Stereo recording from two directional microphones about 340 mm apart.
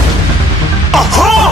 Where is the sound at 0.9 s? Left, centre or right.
Centre.